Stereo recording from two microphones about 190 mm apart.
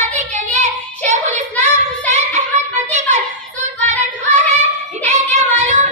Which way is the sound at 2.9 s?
40° right (ahead or behind).